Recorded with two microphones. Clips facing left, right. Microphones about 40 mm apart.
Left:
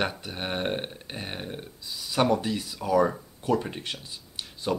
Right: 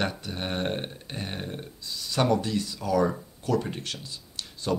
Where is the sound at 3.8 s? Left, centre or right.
Left.